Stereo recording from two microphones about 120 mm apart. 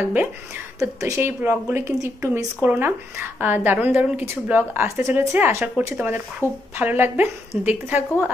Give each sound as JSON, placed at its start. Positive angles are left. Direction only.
{"t": 0.0, "sound": "a woman's voice", "side_deg": -15}
{"t": 0.7, "sound": "a woman's voice", "side_deg": -25}